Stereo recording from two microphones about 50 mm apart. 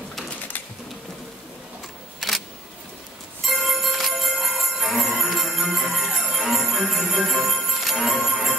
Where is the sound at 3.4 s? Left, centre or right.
Centre.